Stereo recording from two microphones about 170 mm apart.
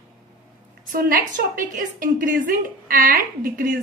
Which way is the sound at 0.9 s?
55° right (ahead or behind).